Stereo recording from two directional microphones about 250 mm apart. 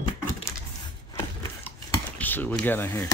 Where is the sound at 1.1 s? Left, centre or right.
Centre.